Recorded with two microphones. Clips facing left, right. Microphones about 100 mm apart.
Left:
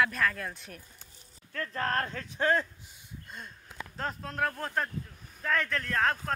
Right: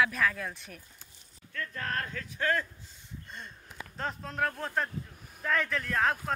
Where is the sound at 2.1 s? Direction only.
25° left (ahead or behind).